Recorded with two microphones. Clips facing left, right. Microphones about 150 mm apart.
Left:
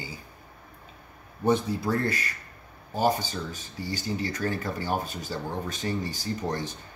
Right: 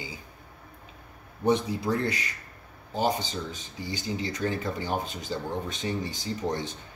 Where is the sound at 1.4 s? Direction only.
20° right (ahead or behind).